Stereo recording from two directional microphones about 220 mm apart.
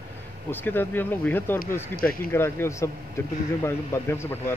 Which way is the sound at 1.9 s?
40° left (ahead or behind).